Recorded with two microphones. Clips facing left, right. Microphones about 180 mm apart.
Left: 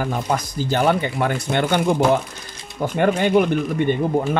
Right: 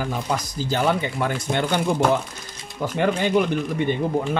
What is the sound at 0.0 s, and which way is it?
Speech, 55° left (ahead or behind).